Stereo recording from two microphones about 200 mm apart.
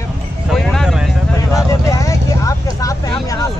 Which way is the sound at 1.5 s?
15° left (ahead or behind).